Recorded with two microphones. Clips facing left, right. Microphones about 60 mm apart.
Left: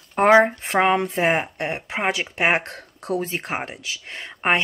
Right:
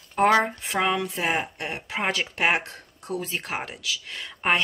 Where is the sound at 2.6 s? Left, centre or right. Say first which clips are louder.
Left 7 dB; left.